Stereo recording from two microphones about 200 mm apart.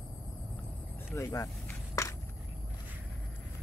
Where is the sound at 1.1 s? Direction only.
15° left (ahead or behind).